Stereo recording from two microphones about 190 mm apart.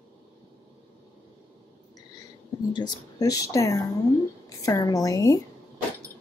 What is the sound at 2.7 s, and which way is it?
Speech, 20° left (ahead or behind).